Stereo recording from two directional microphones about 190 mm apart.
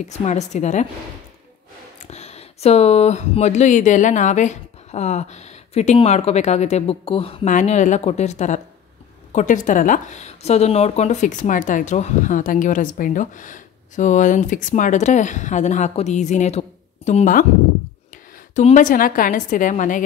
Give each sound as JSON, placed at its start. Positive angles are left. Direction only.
{"t": 0.0, "sound": "a woman's voice", "side_deg": 35}
{"t": 2.0, "sound": "a woman's voice", "side_deg": 35}